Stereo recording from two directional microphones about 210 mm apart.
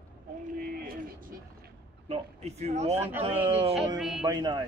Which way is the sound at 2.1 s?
30° right (ahead or behind).